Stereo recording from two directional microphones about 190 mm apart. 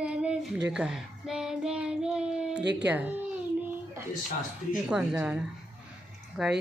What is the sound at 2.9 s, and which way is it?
Speech, 10° right (ahead or behind).